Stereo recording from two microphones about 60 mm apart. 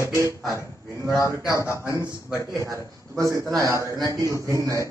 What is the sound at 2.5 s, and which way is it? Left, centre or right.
A man's voice, right.